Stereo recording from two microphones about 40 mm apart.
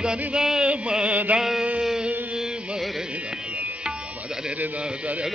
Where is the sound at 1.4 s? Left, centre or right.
Centre.